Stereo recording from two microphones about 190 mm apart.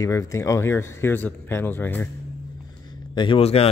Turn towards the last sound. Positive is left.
turn(degrees=30)  # may be behind; listen again after turning